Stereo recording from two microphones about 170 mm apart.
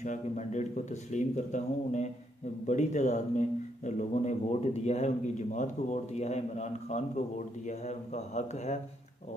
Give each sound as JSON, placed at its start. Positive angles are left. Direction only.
{"t": 0.0, "sound": "a man's voice", "side_deg": 45}